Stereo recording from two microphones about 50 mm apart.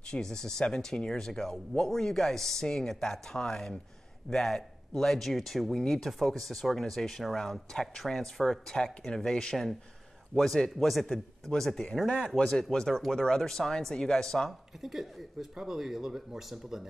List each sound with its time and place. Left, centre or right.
0.0 s speech: centre
14.8 s speech: centre